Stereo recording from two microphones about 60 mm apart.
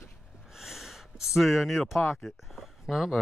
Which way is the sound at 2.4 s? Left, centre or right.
Centre.